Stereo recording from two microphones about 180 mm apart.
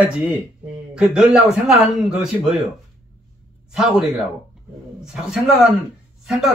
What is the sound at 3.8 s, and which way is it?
Speech, 5° right (ahead or behind).